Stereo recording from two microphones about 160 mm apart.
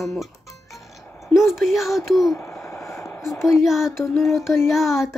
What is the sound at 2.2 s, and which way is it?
Speech, 20° left (ahead or behind).